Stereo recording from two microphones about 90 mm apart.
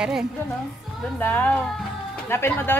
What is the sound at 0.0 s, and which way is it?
Speech, 5° right (ahead or behind).